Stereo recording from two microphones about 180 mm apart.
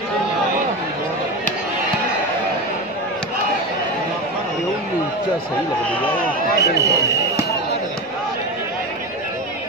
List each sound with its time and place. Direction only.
6.6 s speech: 15° right (ahead or behind)